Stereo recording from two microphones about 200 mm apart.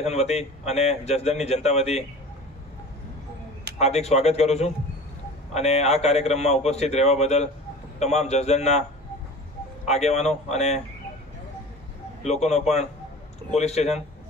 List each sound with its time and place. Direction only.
0.0 s a man's voice: 35° left (ahead or behind)
3.7 s a man's voice: 35° left (ahead or behind)
9.8 s a man's voice: 35° left (ahead or behind)
12.2 s a man's voice: 35° left (ahead or behind)